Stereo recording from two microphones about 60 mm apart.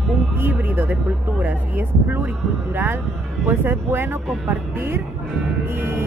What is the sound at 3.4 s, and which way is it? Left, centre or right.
Speech, right.